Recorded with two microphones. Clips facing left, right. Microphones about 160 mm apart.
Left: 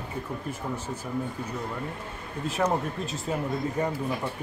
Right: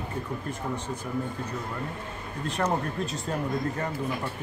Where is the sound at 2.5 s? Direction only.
5° left (ahead or behind).